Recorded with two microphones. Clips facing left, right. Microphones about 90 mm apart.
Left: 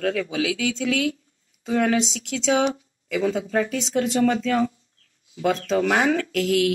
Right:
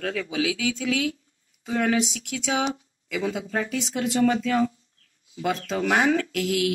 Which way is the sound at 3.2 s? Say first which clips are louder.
Left 5 dB; 5° right (ahead or behind).